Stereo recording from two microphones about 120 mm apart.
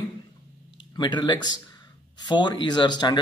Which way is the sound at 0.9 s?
40° left (ahead or behind).